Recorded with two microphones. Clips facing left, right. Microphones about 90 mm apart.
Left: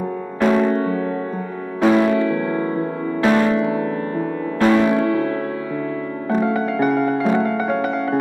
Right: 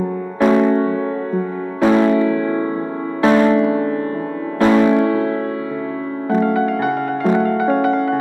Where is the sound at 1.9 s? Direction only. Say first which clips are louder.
Right 2 dB; 15° right (ahead or behind).